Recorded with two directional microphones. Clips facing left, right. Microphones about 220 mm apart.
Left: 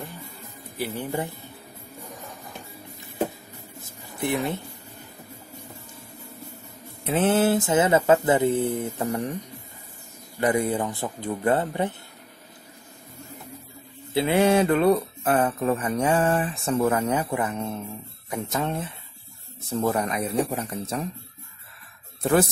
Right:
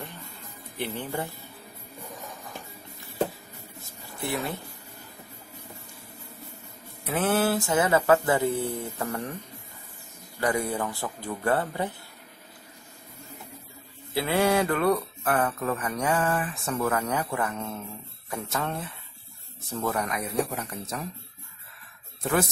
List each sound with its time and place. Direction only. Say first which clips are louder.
0.7 s speech: left 3 dB; 10° left (ahead or behind)
4.2 s speech: left 5 dB; 20° left (ahead or behind)
7.1 s speech: left 4 dB; 25° left (ahead or behind)
10.4 s speech: left 4 dB; 20° left (ahead or behind)
14.1 s speech: left 4 dB; 20° left (ahead or behind)